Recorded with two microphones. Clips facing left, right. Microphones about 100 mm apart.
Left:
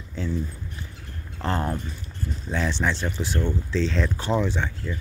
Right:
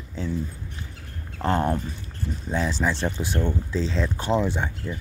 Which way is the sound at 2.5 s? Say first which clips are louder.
Right 1 dB; 5° right (ahead or behind).